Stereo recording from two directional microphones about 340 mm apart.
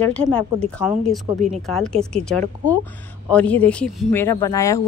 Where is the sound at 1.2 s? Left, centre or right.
Centre.